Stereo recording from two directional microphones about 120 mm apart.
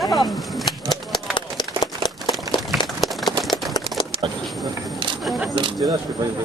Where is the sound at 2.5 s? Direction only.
40° left (ahead or behind).